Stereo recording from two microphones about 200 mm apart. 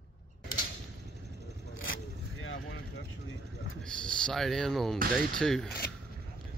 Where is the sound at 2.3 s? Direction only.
75° left (ahead or behind).